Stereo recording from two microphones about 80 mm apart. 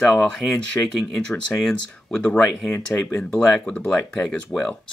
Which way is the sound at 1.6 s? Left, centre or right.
Centre.